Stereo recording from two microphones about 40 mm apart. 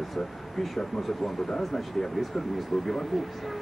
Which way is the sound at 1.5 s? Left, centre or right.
Centre.